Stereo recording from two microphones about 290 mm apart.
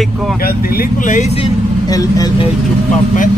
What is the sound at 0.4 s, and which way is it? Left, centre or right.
Speech, left.